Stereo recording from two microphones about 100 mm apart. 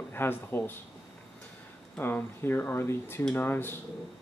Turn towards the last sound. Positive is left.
turn(degrees=20)  # may be behind; listen again after turning